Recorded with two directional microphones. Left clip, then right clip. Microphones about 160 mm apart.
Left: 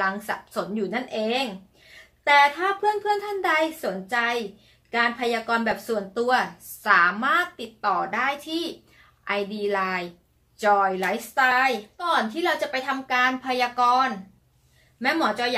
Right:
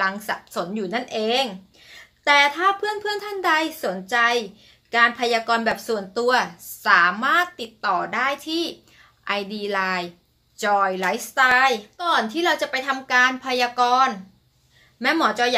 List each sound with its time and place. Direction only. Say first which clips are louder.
0.0 s a woman's voice: right 2 dB; 25° right (ahead or behind)